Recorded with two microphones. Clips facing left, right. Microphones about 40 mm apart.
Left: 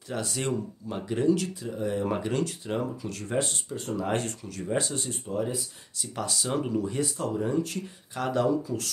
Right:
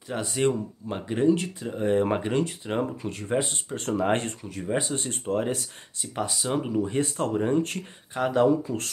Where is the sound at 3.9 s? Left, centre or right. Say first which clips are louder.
Right 4 dB; right.